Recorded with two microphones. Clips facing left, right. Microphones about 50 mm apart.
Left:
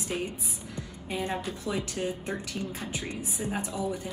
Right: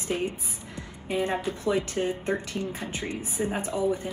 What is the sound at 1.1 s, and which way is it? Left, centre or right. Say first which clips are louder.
A woman's voice: right 5 dB; right.